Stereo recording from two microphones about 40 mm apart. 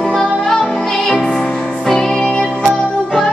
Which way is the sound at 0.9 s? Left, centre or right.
Centre.